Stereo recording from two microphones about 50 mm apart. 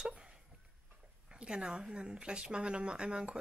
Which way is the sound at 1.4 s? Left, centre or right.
Centre.